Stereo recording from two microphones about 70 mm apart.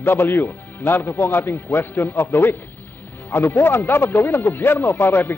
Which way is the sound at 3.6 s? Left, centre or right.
Left.